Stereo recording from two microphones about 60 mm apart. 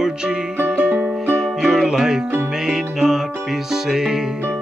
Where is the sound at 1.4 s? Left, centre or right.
Centre.